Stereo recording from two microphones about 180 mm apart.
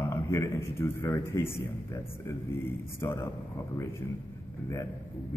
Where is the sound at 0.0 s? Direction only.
15° left (ahead or behind).